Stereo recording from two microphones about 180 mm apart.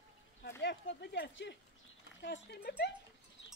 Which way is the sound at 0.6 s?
75° left (ahead or behind).